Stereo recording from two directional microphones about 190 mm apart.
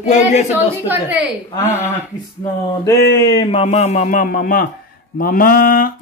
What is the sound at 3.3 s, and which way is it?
A man's voice, 30° left (ahead or behind).